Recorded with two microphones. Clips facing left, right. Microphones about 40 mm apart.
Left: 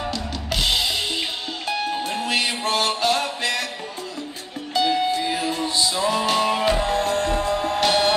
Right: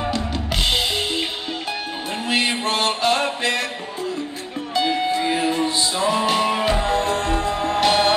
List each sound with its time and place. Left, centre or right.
0.5 s drum kit: right
1.7 s music: centre
2.4 s music: right
4.7 s music: centre
6.0 s music: centre
7.1 s music: right
7.4 s music: centre